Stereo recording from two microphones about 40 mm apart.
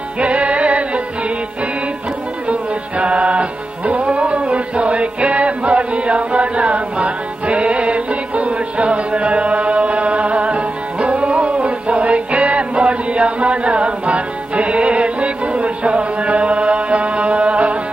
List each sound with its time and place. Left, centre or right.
0.2 s music: right
2.4 s music: right